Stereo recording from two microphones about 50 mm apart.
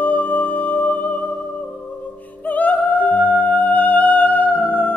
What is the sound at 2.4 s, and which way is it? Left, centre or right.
Music, left.